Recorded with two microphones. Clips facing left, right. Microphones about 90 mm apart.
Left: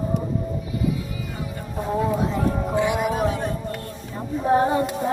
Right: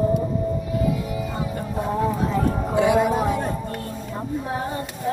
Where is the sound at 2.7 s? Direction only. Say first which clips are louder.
Right 6 dB; 20° right (ahead or behind).